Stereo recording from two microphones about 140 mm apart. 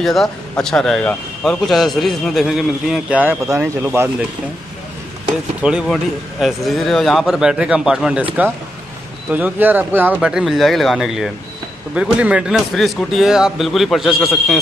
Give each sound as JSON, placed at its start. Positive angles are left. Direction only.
{"t": 0.0, "sound": "speech", "side_deg": 0}
{"t": 5.6, "sound": "speech", "side_deg": -5}